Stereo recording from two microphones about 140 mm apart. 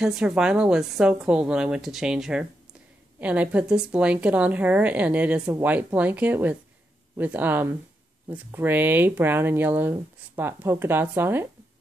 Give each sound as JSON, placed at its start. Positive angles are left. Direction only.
{"t": 0.0, "sound": "a woman's voice", "side_deg": -5}